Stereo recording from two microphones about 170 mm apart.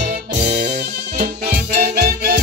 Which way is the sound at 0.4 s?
45° right (ahead or behind).